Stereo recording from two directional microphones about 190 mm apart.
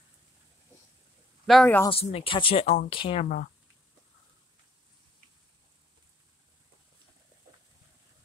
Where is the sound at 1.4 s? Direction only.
5° left (ahead or behind).